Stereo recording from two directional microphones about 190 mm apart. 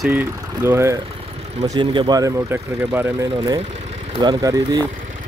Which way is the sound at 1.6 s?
25° right (ahead or behind).